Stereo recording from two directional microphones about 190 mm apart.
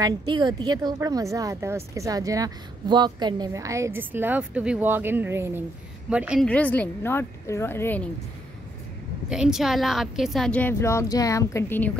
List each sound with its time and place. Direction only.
0.0 s a woman's voice: 20° right (ahead or behind); by 6.4 s 5° right (ahead or behind)
6.4 s speech: 5° left (ahead or behind)
9.3 s a woman's voice: 5° right (ahead or behind); by 11.9 s 15° left (ahead or behind)